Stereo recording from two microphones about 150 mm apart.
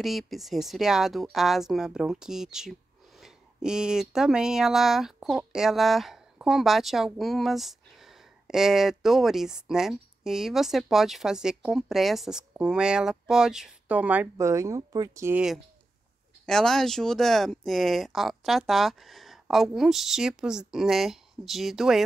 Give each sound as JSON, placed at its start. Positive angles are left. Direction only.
{"t": 0.0, "sound": "speech", "side_deg": 0}
{"t": 16.4, "sound": "speech", "side_deg": 5}